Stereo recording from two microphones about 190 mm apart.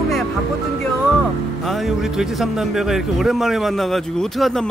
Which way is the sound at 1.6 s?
Centre (ahead or behind).